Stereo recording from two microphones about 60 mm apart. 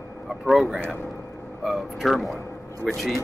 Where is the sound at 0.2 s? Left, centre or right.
Centre.